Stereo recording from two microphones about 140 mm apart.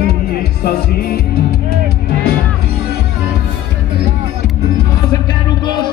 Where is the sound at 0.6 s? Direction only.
90° left.